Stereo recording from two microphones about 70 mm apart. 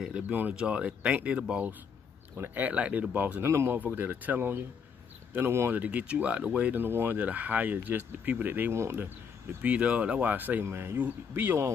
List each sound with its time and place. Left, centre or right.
0.1 s speech: right
2.3 s speech: right
3.4 s speech: right
3.8 s speech: right
5.8 s speech: centre
6.7 s speech: right
9.0 s speech: right
10.6 s speech: right